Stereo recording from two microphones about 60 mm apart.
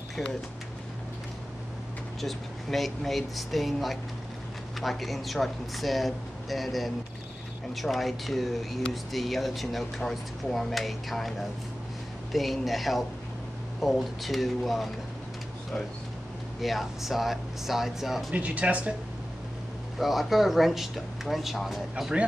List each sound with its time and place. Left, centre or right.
2.2 s speech: centre
16.6 s speech: centre
18.3 s speech: right
20.0 s speech: centre